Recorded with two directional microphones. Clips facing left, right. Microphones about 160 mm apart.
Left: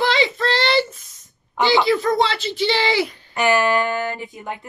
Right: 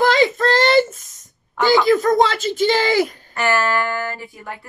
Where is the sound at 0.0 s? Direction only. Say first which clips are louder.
Right 4 dB; 45° right (ahead or behind).